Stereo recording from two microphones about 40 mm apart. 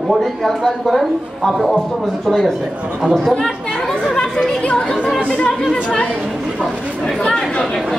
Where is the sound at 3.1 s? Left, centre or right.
Centre.